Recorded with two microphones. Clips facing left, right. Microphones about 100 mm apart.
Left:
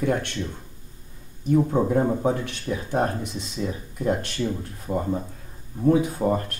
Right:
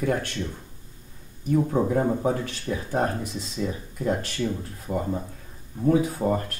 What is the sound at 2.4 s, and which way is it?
Speech, 20° left (ahead or behind).